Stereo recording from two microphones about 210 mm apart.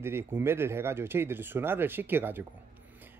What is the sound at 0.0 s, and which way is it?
Speech, 10° right (ahead or behind).